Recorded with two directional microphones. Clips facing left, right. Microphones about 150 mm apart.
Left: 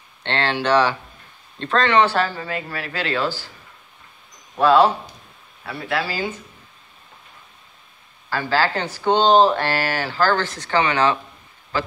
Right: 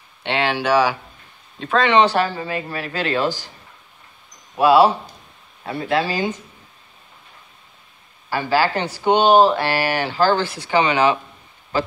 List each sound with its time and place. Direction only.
0.2 s speech: 10° right (ahead or behind)
1.9 s speech: 15° right (ahead or behind)
4.6 s speech: 10° right (ahead or behind)
5.8 s speech: 20° right (ahead or behind)
8.3 s speech: 15° right (ahead or behind)